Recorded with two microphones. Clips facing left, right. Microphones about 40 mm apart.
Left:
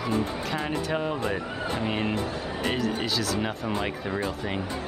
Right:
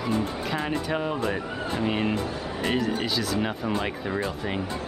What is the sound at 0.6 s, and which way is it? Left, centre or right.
Speech, centre.